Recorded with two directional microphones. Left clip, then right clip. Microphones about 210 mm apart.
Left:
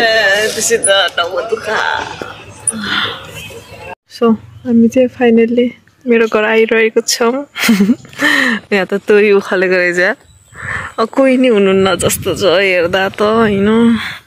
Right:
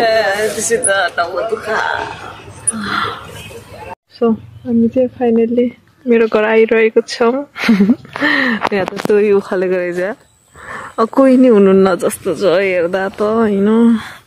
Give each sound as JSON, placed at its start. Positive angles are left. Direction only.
{"t": 0.0, "sound": "speech", "side_deg": -15}
{"t": 4.2, "sound": "a woman's voice", "side_deg": 10}
{"t": 4.6, "sound": "speech", "side_deg": 20}
{"t": 10.6, "sound": "a sound", "side_deg": -5}
{"t": 11.1, "sound": "speech", "side_deg": -20}